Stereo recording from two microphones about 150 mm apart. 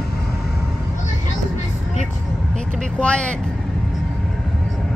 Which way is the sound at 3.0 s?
5° left (ahead or behind).